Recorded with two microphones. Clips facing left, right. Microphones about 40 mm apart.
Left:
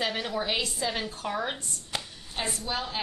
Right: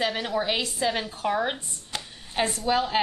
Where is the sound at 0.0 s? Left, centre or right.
Centre.